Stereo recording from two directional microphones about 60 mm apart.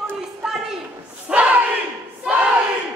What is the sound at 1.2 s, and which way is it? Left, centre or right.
Battle cry, right.